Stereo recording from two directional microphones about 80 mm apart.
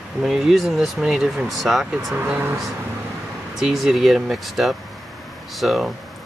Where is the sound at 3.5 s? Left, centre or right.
Centre.